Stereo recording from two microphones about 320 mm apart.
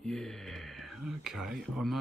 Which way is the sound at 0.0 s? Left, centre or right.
Centre.